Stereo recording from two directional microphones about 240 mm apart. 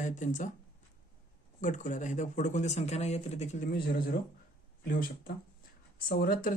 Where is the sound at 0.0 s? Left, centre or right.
Left.